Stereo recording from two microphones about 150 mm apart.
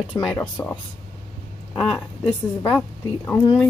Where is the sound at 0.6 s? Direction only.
20° left (ahead or behind).